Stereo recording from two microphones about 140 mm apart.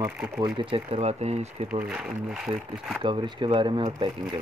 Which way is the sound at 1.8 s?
5° right (ahead or behind).